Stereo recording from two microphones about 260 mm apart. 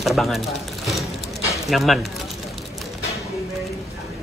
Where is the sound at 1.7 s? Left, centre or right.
Centre.